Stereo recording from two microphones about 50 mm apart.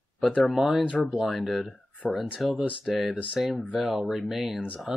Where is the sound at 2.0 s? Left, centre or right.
Centre.